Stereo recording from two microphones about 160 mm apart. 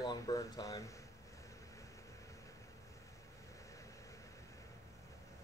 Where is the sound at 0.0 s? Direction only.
20° left (ahead or behind).